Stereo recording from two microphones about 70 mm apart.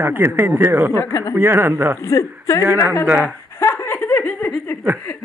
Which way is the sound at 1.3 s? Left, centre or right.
Right.